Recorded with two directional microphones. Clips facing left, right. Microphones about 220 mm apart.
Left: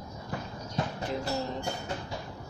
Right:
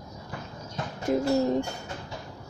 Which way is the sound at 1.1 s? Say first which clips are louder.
Right 14 dB; 50° right (ahead or behind).